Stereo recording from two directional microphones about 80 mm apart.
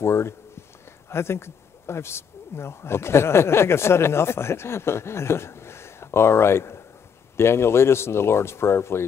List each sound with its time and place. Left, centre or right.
0.0 s speech: left